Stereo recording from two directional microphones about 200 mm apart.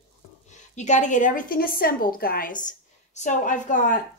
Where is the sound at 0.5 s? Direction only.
35° left (ahead or behind).